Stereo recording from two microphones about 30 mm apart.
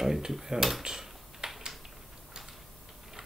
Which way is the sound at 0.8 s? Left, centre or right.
Centre.